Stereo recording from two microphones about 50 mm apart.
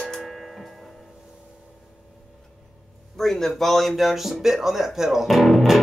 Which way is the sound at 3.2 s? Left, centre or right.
Centre.